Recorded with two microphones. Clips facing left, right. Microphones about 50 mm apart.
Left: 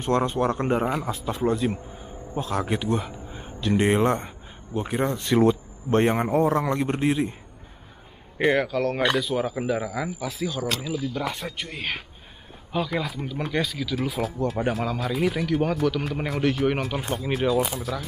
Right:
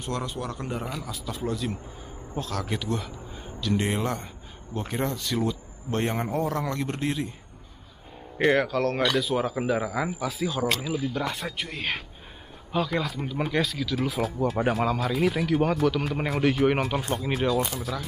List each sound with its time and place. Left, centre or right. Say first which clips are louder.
0.0 s a man's voice: left 9 dB; left
4.7 s speech: left 4 dB; centre
5.1 s speech: left 8 dB; left
8.5 s speech: even; centre
11.1 s speech: even; centre